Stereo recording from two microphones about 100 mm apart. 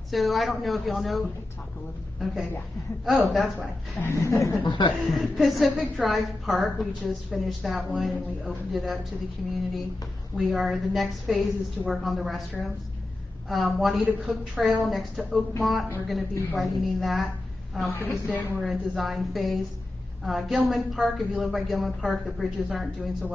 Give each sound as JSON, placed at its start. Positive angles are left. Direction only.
{"t": 0.1, "sound": "a woman's voice", "side_deg": 0}
{"t": 4.0, "sound": "speech", "side_deg": 30}
{"t": 4.6, "sound": "speech", "side_deg": 50}
{"t": 5.1, "sound": "a woman's voice", "side_deg": 0}
{"t": 10.3, "sound": "a woman's voice", "side_deg": 0}
{"t": 18.0, "sound": "a woman's voice", "side_deg": 20}
{"t": 18.6, "sound": "a woman's voice", "side_deg": 0}